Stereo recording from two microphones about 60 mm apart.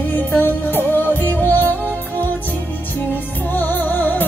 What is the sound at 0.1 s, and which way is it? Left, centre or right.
Music, left.